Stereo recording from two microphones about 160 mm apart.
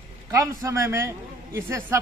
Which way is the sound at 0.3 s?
20° right (ahead or behind).